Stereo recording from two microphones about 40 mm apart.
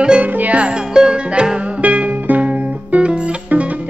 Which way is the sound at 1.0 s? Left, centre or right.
Centre.